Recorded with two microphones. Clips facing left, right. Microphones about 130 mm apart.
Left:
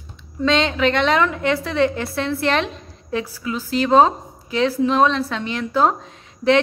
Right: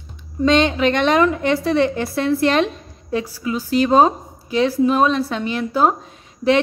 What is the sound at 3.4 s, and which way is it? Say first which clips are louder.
A woman's voice: right 4 dB; 15° right (ahead or behind).